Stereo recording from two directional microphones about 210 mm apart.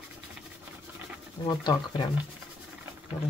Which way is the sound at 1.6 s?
20° left (ahead or behind).